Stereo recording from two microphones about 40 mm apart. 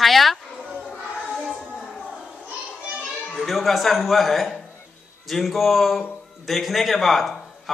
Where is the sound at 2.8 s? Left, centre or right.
Right.